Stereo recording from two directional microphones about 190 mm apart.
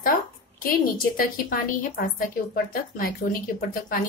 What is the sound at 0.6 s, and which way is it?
A woman's voice, 50° left (ahead or behind).